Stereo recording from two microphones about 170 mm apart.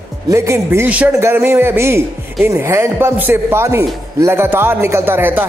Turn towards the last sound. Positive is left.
turn(degrees=-10)  # may be behind; listen again after turning